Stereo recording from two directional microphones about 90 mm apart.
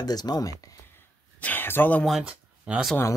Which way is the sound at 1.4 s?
20° left (ahead or behind).